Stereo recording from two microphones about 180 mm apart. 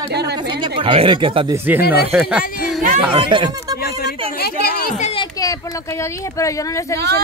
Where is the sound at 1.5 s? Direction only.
10° right (ahead or behind).